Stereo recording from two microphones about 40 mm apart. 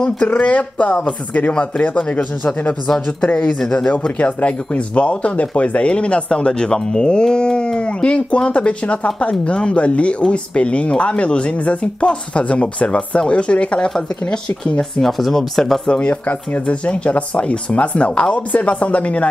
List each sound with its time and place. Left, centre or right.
0.3 s speech: left
1.6 s speech: left
3.3 s speech: left
14.3 s speech: centre
15.9 s speech: left